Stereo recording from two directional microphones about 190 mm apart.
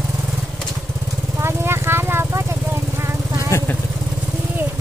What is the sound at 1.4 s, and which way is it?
Vehicle, 15° right (ahead or behind).